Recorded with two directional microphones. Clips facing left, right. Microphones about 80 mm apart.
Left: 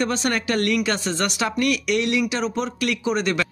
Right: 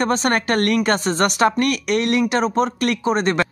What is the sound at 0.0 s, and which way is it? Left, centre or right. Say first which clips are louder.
Speech: right 4 dB; right.